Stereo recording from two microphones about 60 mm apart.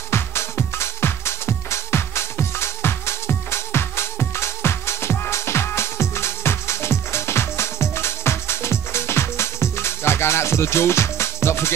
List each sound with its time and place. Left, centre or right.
0.1 s music: left